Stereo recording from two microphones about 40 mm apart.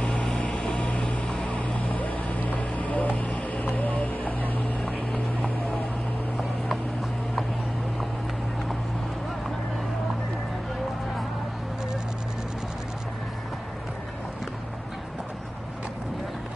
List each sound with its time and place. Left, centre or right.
0.0 s vehicle: left
0.5 s vehicle: centre; by 4.9 s left
5.1 s boat: left